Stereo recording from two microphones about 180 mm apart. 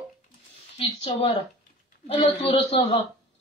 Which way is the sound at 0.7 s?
30° left (ahead or behind).